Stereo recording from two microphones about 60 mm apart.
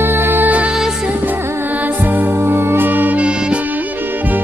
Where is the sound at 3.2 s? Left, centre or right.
Centre.